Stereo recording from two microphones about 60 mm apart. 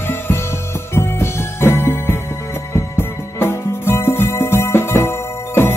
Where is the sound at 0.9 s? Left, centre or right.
Left.